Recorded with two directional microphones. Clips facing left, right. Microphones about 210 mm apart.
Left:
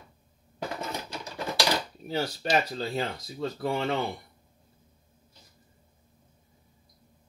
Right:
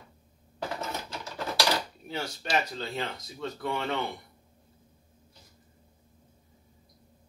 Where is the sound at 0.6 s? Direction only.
15° left (ahead or behind).